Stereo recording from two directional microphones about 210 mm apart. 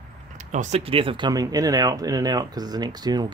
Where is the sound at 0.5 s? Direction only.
35° right (ahead or behind).